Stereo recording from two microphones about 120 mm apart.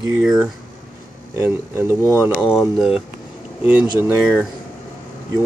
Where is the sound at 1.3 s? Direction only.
20° right (ahead or behind).